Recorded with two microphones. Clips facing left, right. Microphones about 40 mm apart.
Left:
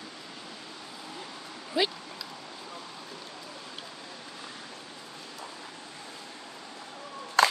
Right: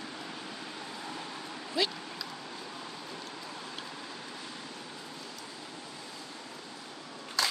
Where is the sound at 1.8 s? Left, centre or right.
Centre.